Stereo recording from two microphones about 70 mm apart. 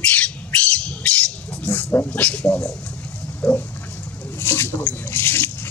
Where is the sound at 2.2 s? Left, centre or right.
Centre.